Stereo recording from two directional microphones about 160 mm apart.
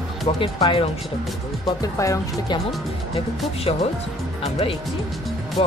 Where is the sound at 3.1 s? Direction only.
40° left (ahead or behind).